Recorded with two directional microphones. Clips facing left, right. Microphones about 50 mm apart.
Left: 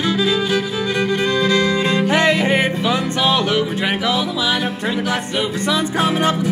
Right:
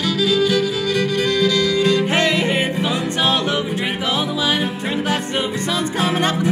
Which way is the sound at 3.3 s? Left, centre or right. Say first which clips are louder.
Left 2 dB; right.